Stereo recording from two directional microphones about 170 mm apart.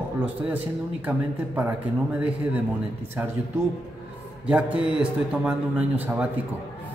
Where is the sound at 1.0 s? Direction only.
10° right (ahead or behind).